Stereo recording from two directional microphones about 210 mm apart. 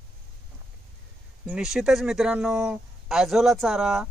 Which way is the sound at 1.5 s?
5° right (ahead or behind).